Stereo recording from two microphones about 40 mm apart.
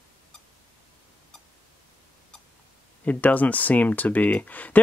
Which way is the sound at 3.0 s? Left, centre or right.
Left.